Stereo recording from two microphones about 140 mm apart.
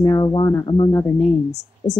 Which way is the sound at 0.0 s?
30° left (ahead or behind).